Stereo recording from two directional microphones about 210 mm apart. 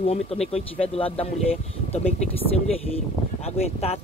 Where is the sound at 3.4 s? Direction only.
30° left (ahead or behind).